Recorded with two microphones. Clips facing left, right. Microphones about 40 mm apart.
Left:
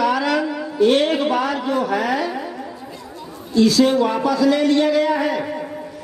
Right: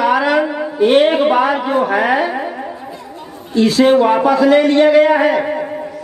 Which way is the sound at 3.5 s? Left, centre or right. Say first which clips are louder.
Right 4 dB; right.